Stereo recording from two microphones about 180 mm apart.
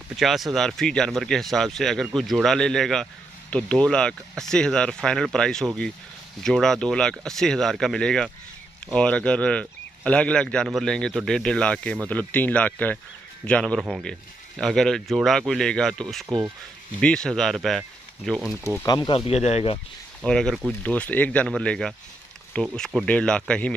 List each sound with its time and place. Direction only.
0.1 s speech: centre (ahead or behind)
16.3 s speech: 20° right (ahead or behind)
17.0 s speech: 5° left (ahead or behind)
18.8 s speech: 20° left (ahead or behind)
20.2 s speech: 5° left (ahead or behind)